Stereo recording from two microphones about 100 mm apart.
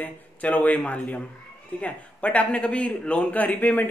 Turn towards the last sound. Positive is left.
turn(degrees=15)  # may be behind; listen again after turning